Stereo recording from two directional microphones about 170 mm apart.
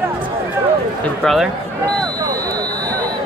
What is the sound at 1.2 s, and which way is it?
Speech, centre (ahead or behind).